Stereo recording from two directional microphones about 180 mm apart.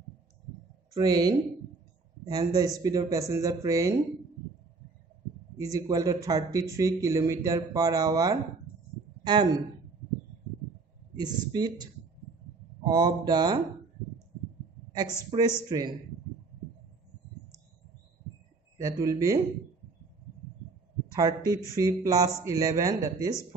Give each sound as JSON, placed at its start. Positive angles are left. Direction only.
{"t": 0.9, "sound": "speech", "side_deg": -20}
{"t": 5.6, "sound": "speech", "side_deg": -20}
{"t": 11.1, "sound": "speech", "side_deg": -20}
{"t": 15.3, "sound": "speech", "side_deg": -30}
{"t": 18.8, "sound": "speech", "side_deg": -20}
{"t": 21.1, "sound": "speech", "side_deg": -20}